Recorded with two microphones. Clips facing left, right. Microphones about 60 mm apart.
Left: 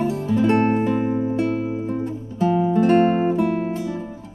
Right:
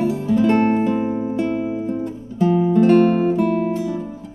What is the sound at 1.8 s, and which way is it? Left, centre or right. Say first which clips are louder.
Music: right 1 dB; centre.